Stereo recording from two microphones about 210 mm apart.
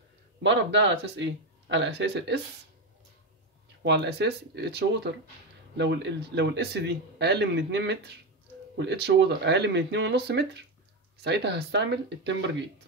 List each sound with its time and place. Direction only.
0.4 s speech: 60° right (ahead or behind)
3.8 s a man's voice: 55° right (ahead or behind)